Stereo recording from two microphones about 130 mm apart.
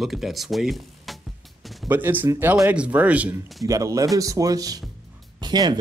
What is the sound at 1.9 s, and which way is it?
Speech, 15° right (ahead or behind).